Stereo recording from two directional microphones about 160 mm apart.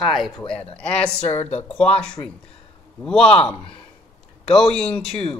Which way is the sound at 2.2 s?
20° left (ahead or behind).